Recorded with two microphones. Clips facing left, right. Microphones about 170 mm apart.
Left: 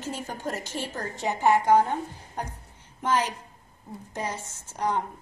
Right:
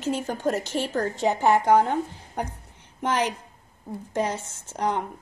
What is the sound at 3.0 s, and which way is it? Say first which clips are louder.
Speech: right 1 dB; 70° right (ahead or behind).